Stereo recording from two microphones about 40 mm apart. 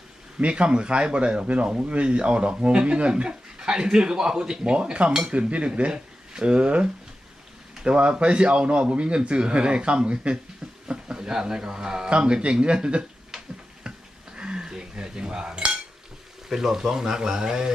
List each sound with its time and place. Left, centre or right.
0.4 s speech: right
13.3 s tick-tock: centre
13.8 s a sound: right
14.7 s cutlery: centre
16.4 s speech: centre